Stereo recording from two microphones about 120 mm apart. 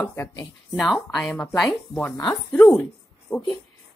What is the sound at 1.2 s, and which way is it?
A woman's voice, 5° left (ahead or behind).